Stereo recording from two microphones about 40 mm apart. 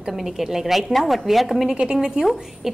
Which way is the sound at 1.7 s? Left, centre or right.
Centre.